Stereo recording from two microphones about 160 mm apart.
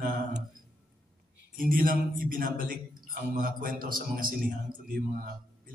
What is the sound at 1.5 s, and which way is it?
A man's voice, 60° right (ahead or behind).